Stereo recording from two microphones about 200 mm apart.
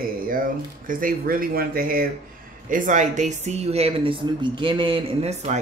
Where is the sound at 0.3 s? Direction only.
45° right (ahead or behind).